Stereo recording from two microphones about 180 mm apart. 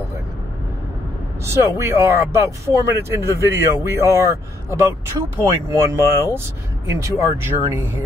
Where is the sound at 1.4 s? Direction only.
15° right (ahead or behind).